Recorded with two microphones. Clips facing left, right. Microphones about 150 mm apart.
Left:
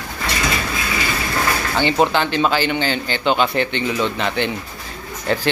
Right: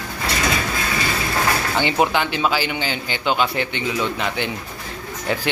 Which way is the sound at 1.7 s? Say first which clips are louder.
Left 4 dB; 10° right (ahead or behind).